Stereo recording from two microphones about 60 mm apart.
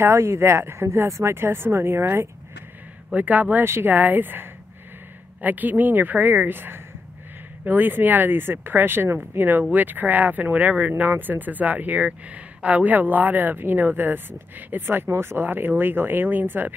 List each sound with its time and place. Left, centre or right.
0.0 s speech: right
3.1 s speech: right
3.6 s speech: right
3.9 s speech: right